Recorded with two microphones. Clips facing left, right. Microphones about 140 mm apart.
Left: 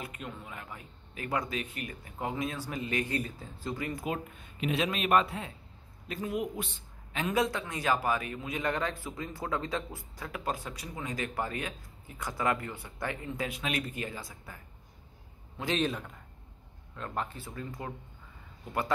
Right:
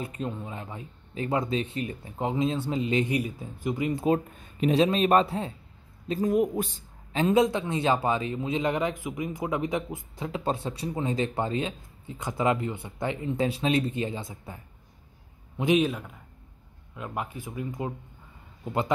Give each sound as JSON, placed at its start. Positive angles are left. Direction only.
{"t": 0.0, "sound": "speech", "side_deg": -30}
{"t": 4.0, "sound": "a man's voice", "side_deg": -35}
{"t": 15.8, "sound": "a man's voice", "side_deg": -5}